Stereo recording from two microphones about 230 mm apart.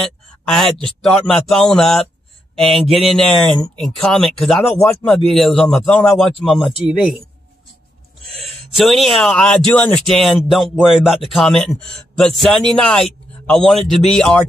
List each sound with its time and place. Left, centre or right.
0.8 s speech: centre
8.7 s speech: centre